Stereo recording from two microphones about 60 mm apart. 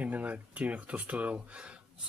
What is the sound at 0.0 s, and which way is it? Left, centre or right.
Speech, right.